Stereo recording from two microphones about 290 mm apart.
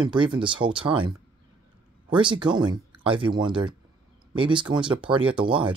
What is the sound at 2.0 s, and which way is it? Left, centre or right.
Speech, centre.